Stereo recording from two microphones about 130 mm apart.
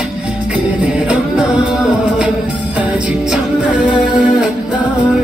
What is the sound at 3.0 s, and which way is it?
Music, 10° right (ahead or behind).